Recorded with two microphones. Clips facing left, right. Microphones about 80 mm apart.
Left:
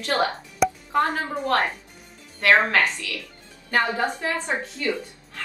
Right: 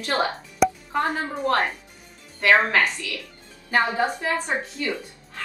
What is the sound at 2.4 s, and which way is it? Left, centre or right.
A woman's voice, centre.